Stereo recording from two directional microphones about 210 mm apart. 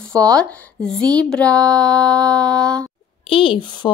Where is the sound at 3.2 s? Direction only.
25° left (ahead or behind).